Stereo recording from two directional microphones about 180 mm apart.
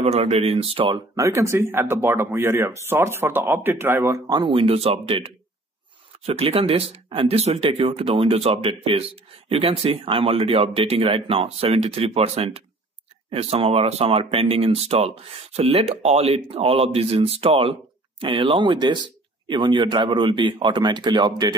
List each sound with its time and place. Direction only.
0.0 s speech: 40° right (ahead or behind)
1.1 s speech: 15° right (ahead or behind)